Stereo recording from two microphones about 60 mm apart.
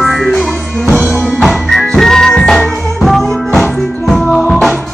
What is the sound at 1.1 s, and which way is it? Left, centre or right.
Music, centre.